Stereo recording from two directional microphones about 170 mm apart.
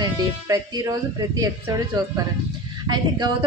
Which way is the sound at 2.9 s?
25° right (ahead or behind).